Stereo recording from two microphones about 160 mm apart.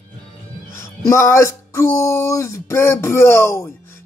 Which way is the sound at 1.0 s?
15° left (ahead or behind).